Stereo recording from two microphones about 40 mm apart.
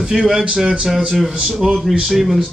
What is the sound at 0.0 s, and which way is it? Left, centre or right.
Speech, centre.